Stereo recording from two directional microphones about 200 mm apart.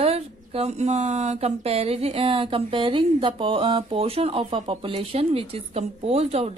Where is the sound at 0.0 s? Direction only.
30° right (ahead or behind).